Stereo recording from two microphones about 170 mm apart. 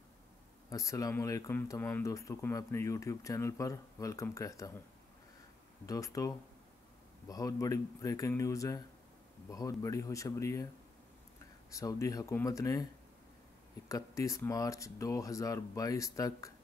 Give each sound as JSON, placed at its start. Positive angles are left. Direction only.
{"t": 0.7, "sound": "speech", "side_deg": 20}
{"t": 5.9, "sound": "speech", "side_deg": 20}
{"t": 11.7, "sound": "speech", "side_deg": 20}
{"t": 13.8, "sound": "speech", "side_deg": 20}